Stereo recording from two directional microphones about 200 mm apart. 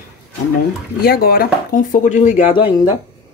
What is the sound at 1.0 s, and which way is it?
Speech, 50° left (ahead or behind).